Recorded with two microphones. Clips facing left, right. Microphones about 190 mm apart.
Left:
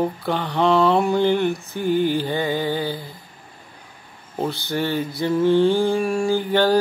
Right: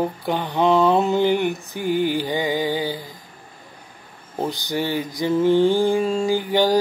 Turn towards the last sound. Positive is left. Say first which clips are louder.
# even
turn(degrees=-15)  # may be behind; listen again after turning